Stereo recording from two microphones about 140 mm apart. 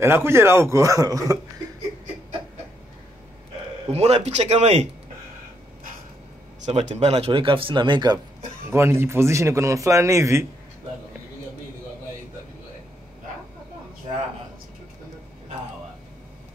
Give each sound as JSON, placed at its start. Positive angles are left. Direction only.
{"t": 0.0, "sound": "a man's voice", "side_deg": -15}
{"t": 3.9, "sound": "speech", "side_deg": -50}
{"t": 6.6, "sound": "speech", "side_deg": -55}
{"t": 8.6, "sound": "a man's voice", "side_deg": -20}